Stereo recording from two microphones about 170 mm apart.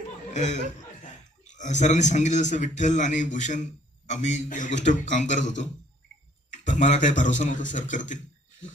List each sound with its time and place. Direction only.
0.3 s a man's voice: 45° left (ahead or behind)